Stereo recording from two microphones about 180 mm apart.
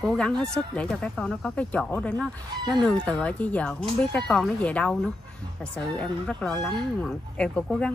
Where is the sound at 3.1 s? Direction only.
5° left (ahead or behind).